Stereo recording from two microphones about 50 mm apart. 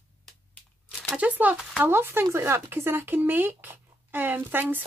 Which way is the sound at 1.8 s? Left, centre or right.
Right.